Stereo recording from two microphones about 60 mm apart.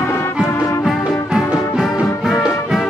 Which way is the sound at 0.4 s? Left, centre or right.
Centre.